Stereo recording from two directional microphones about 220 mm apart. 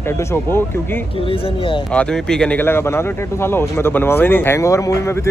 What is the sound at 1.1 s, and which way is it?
Speech, 25° left (ahead or behind).